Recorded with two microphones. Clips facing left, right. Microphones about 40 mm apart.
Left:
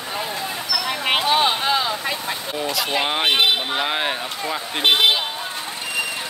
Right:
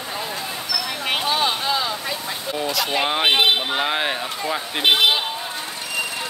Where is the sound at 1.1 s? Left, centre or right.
Left.